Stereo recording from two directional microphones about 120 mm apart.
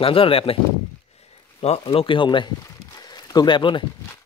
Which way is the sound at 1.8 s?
50° left (ahead or behind).